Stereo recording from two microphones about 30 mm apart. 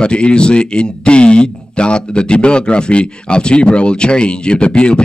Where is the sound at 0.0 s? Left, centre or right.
Left.